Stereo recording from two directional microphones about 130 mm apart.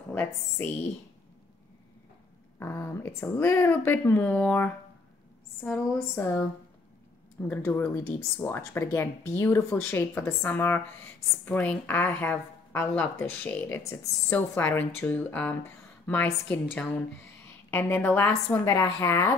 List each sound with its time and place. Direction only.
0.1 s a woman's voice: 15° left (ahead or behind)
2.6 s speech: 20° left (ahead or behind)
7.4 s speech: 15° left (ahead or behind)